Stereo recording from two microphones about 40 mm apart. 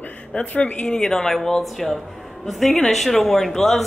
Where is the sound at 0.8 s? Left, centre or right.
Centre.